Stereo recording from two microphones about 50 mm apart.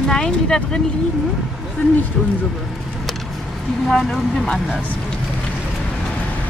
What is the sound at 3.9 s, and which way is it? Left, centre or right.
Speech, centre.